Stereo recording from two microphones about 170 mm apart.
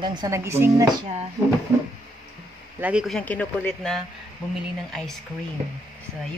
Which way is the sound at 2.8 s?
5° right (ahead or behind).